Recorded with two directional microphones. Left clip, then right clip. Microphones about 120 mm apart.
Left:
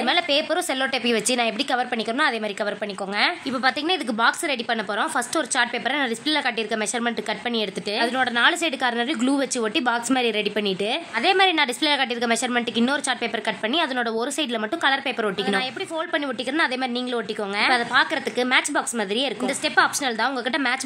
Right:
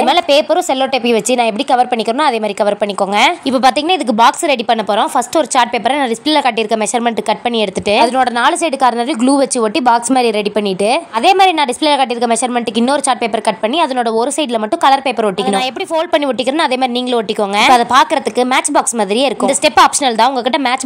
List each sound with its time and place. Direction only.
0.0 s a woman's voice: 50° right (ahead or behind)
3.2 s a woman's voice: 65° right (ahead or behind)
8.2 s a woman's voice: 40° right (ahead or behind)
16.1 s a woman's voice: 55° right (ahead or behind)